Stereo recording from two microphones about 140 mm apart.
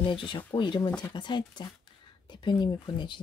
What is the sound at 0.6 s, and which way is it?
Speech, 30° left (ahead or behind).